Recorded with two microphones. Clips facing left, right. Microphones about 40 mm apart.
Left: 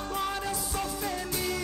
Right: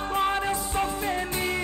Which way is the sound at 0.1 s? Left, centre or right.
Right.